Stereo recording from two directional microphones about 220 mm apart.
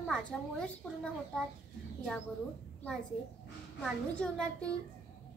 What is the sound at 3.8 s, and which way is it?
Speech, 5° left (ahead or behind).